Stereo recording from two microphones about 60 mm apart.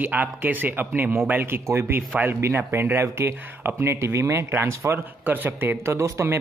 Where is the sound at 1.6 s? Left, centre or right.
Right.